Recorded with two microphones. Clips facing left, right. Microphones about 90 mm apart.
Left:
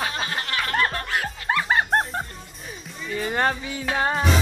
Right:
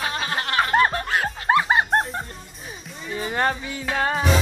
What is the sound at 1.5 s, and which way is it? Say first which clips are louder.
Music: right 5 dB; 40° right (ahead or behind).